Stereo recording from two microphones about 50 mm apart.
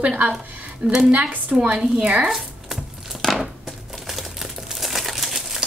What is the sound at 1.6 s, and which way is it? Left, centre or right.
Speech, centre.